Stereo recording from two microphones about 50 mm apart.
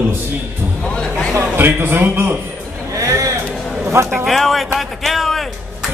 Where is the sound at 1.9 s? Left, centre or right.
Right.